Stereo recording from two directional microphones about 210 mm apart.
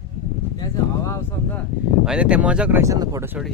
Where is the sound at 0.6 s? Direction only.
15° left (ahead or behind).